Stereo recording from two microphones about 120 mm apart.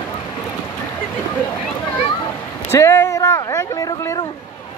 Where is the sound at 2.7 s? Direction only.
20° left (ahead or behind).